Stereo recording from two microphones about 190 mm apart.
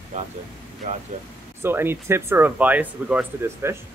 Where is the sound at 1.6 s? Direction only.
10° right (ahead or behind).